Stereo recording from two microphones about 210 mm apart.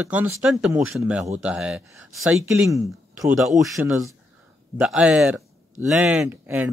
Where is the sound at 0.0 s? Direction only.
5° right (ahead or behind).